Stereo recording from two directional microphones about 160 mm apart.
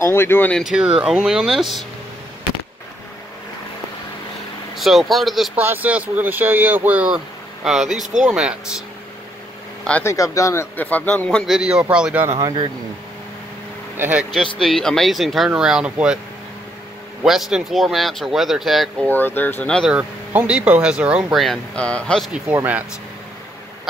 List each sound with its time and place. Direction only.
0.0 s a man's voice: 15° left (ahead or behind)
0.7 s speech: 5° right (ahead or behind)
4.7 s speech: centre (ahead or behind)
8.2 s speech: 5° right (ahead or behind)
9.8 s speech: 10° left (ahead or behind)
10.1 s a man's voice: 20° left (ahead or behind); by 12.3 s 5° right (ahead or behind)
12.4 s speech: 20° right (ahead or behind)
14.1 s speech: centre (ahead or behind)
17.2 s speech: 5° right (ahead or behind)
19.0 s a man's voice: 10° left (ahead or behind)
19.9 s speech: 5° right (ahead or behind)
22.3 s speech: 10° right (ahead or behind)